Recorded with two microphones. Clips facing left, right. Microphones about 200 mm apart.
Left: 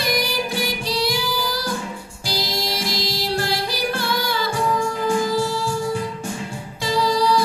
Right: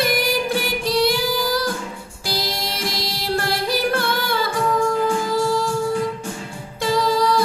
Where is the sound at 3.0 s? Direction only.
55° right (ahead or behind).